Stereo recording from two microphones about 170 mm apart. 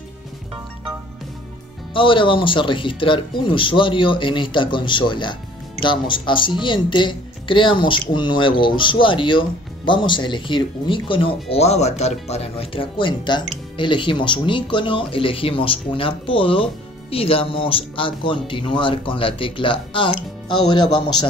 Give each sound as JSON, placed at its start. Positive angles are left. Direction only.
{"t": 2.0, "sound": "speech", "side_deg": 30}